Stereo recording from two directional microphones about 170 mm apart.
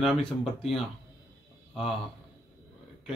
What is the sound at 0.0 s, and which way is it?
A man's voice, centre (ahead or behind).